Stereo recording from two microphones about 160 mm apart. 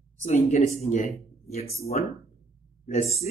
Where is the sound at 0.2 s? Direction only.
45° left (ahead or behind).